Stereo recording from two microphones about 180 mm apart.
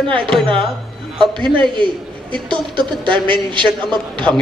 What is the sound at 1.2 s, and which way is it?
Speech, 25° right (ahead or behind).